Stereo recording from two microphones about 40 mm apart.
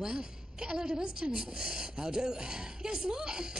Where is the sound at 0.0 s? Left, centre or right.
Centre.